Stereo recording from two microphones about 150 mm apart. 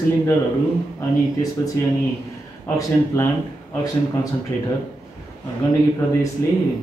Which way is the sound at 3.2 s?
20° left (ahead or behind).